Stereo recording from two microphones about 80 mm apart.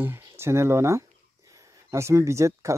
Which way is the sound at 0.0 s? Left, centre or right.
Right.